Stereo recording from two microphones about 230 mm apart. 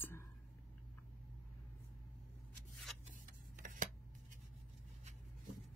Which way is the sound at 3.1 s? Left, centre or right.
Right.